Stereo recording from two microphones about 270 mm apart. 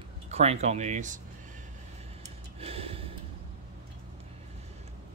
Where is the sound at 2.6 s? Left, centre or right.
Right.